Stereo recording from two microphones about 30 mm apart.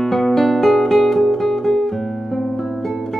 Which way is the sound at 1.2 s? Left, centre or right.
Centre.